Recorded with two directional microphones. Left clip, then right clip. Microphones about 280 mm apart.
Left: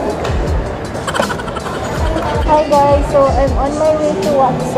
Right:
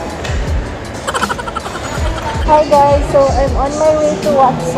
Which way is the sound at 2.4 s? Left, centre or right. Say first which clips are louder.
Right 3 dB; centre.